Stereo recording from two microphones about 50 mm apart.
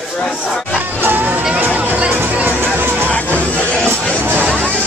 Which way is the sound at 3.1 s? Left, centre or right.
Left.